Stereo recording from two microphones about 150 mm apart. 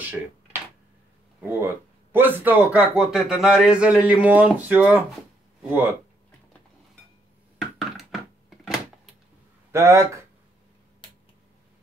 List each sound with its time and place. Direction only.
1.4 s a man's voice: 15° right (ahead or behind)
8.0 s a sound: centre (ahead or behind)
9.7 s speech: 20° right (ahead or behind)